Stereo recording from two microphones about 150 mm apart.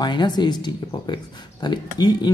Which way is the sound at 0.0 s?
30° left (ahead or behind).